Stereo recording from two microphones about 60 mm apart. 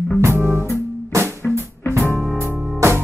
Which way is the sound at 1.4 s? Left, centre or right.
Centre.